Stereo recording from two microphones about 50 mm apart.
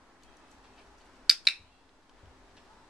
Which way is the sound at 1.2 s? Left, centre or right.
Centre.